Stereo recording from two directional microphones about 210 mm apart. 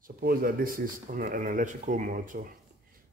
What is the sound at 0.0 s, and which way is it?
Speech, 45° right (ahead or behind).